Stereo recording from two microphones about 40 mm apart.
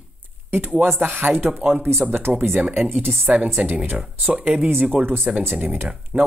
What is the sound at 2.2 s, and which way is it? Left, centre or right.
Speech, right.